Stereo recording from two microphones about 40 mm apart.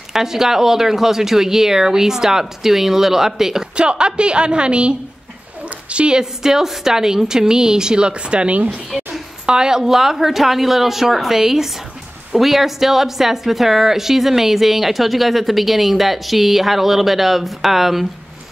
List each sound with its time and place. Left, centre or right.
0.1 s speech: centre
3.7 s a woman's voice: right
8.9 s a sound: centre
9.5 s a woman's voice: centre